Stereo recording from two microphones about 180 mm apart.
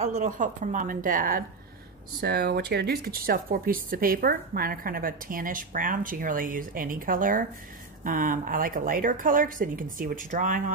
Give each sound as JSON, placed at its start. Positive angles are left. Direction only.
{"t": 0.0, "sound": "speech", "side_deg": -45}
{"t": 2.1, "sound": "speech", "side_deg": -60}